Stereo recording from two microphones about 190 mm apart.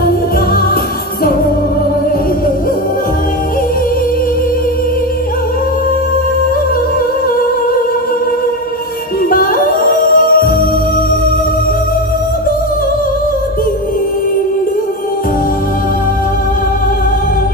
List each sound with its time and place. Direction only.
9.3 s music: 45° left (ahead or behind)